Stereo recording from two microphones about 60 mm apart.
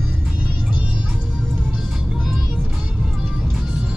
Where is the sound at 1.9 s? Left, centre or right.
Centre.